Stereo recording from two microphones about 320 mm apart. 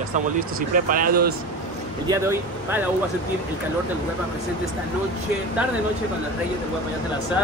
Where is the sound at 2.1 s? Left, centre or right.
Centre.